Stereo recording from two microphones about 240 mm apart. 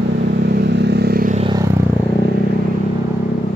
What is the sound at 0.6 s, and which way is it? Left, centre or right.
Vehicle, right.